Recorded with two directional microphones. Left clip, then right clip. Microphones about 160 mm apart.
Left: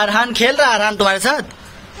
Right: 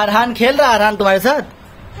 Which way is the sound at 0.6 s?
20° right (ahead or behind).